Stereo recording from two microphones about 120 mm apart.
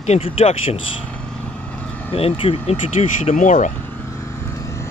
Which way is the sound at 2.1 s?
50° left (ahead or behind).